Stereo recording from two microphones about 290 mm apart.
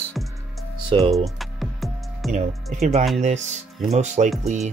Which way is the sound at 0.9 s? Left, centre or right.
Centre.